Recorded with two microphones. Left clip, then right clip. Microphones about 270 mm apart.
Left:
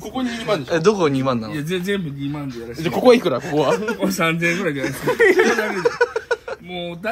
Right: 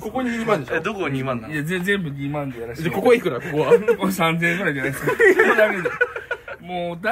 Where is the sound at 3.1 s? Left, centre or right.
Left.